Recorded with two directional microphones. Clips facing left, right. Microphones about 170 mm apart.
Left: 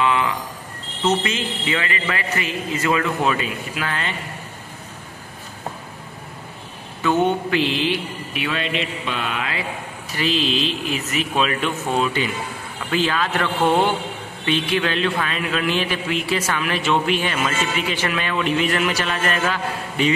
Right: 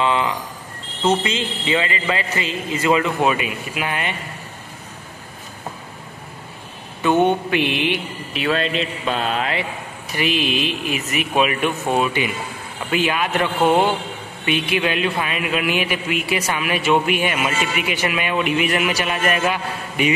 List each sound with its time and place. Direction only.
0.0 s a sound: 25° right (ahead or behind)
1.0 s a man's voice: 25° right (ahead or behind)
7.0 s a man's voice: 20° right (ahead or behind)
8.4 s a man's voice: 40° right (ahead or behind)
10.1 s a man's voice: 15° right (ahead or behind)